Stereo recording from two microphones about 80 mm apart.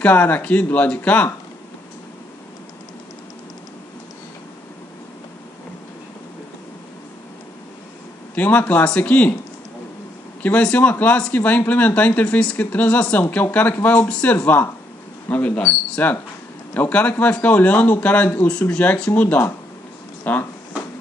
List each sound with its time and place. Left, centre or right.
0.0 s speech: left
8.4 s speech: centre
10.4 s speech: centre